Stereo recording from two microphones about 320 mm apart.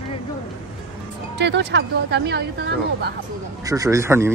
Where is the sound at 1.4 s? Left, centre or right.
Right.